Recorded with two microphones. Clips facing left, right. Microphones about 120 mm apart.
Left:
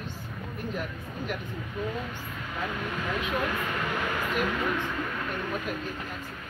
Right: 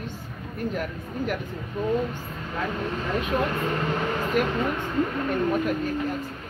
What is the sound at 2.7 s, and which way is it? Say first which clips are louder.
Speech: right 4 dB; 35° right (ahead or behind).